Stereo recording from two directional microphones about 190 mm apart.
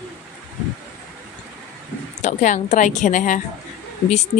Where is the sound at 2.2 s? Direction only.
40° left (ahead or behind).